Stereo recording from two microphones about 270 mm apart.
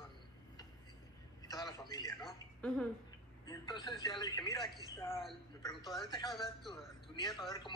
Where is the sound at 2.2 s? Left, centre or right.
Centre.